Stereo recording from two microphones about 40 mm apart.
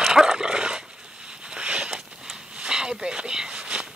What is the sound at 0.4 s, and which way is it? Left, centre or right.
Dog, centre.